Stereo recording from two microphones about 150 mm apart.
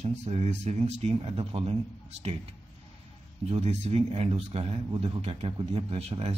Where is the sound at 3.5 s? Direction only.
45° right (ahead or behind).